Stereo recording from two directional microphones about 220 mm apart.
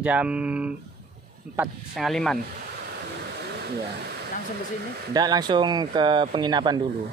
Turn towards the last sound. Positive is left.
turn(degrees=-20)  # may be behind; listen again after turning